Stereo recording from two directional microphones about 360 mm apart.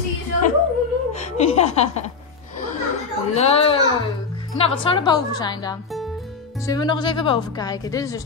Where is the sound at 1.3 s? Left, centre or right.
Centre.